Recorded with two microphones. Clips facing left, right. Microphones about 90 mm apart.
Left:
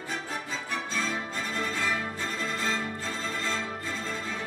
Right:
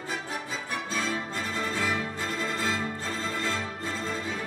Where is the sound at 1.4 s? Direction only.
10° right (ahead or behind).